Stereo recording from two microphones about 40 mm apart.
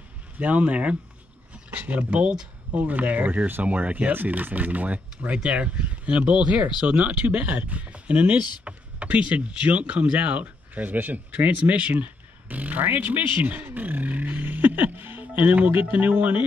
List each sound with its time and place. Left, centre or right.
0.4 s speech: right
1.7 s speech: right
5.3 s speech: right